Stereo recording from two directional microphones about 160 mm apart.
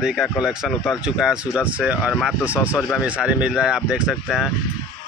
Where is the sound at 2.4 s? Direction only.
10° right (ahead or behind).